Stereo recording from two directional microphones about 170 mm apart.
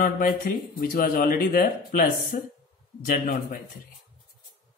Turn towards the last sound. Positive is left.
turn(degrees=60)  # may be behind; listen again after turning